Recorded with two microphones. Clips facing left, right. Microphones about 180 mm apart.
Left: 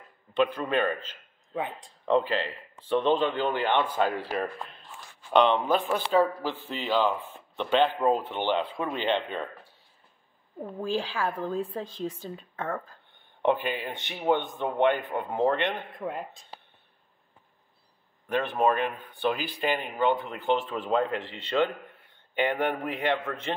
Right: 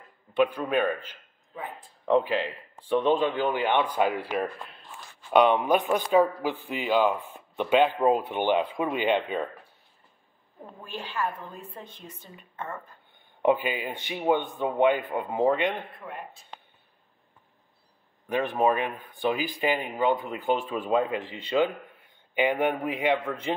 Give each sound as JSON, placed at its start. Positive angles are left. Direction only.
{"t": 0.3, "sound": "speech", "side_deg": -10}
{"t": 10.8, "sound": "speech", "side_deg": 90}
{"t": 13.4, "sound": "speech", "side_deg": -10}
{"t": 18.3, "sound": "speech", "side_deg": -10}